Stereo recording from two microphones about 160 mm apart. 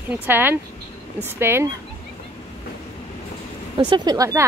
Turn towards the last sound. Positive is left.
turn(degrees=-20)  # may be behind; listen again after turning